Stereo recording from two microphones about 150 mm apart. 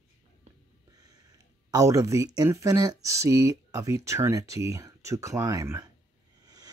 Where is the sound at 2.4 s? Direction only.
20° right (ahead or behind).